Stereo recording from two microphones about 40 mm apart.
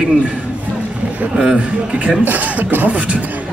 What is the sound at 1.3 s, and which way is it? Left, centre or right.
Speech, centre.